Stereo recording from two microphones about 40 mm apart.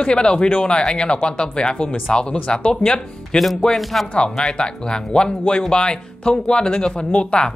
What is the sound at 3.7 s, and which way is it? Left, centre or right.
Speech, centre.